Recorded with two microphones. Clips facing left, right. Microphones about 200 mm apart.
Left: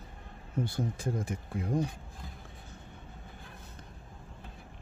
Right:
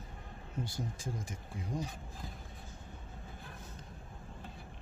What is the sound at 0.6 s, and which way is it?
Speech, 60° left (ahead or behind).